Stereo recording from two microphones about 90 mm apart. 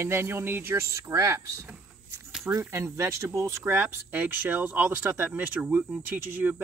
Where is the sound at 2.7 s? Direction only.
30° right (ahead or behind); by 6.6 s 15° right (ahead or behind).